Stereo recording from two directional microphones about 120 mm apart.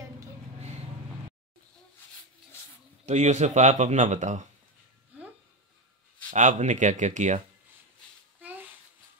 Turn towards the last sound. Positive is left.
turn(degrees=-90)